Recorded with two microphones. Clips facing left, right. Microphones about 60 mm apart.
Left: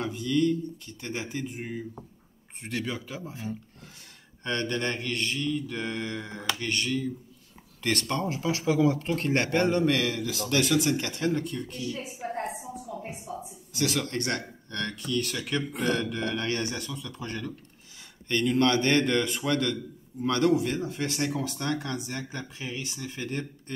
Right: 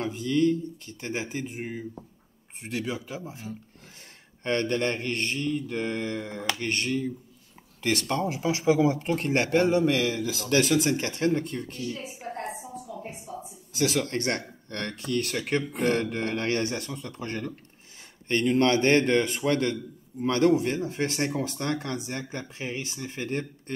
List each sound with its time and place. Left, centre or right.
0.0 s speech: right
4.4 s a man's voice: right
8.1 s a man's voice: centre; by 12.0 s right
12.2 s a sound: centre
13.4 s a sound: right
14.1 s a man's voice: right